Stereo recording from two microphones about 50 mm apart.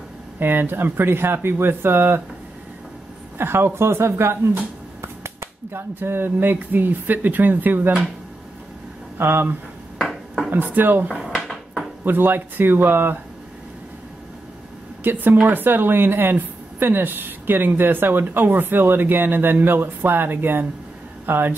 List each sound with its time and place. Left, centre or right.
0.4 s speech: right
3.3 s speech: right
9.2 s speech: right
9.9 s dishes: centre
10.5 s speech: right
11.2 s dishes: centre
12.0 s speech: right
15.0 s speech: right